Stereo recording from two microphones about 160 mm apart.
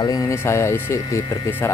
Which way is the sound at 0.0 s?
20° left (ahead or behind).